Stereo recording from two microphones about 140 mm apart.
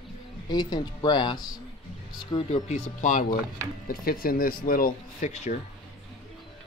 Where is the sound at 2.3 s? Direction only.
45° left (ahead or behind); by 3.3 s 65° left (ahead or behind).